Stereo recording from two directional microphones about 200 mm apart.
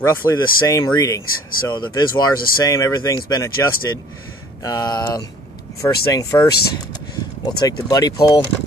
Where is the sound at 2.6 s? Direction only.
15° left (ahead or behind).